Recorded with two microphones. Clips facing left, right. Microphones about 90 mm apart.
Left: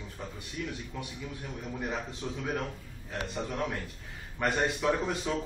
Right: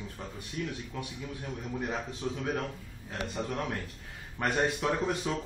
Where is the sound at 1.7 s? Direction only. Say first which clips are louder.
Right 1 dB; 5° right (ahead or behind).